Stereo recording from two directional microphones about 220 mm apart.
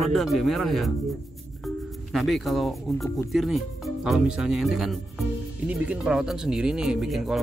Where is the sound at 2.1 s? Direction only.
Centre (ahead or behind).